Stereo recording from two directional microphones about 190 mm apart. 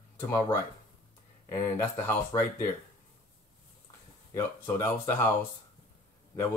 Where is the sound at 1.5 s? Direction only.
10° left (ahead or behind).